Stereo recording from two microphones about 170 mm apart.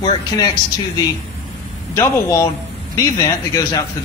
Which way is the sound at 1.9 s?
15° left (ahead or behind).